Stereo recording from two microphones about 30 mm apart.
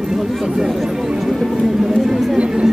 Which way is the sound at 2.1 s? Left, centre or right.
Centre.